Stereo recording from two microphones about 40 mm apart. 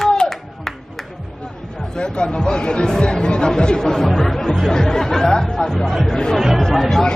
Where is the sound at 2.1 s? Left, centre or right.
Left.